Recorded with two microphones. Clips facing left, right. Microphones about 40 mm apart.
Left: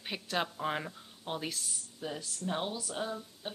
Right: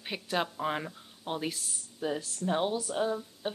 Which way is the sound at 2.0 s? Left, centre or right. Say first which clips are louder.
Right 6 dB; centre.